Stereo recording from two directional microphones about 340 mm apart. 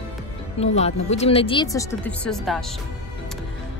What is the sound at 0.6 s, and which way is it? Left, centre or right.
Speech, centre.